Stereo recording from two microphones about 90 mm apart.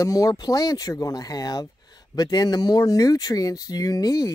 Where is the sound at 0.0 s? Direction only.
40° left (ahead or behind).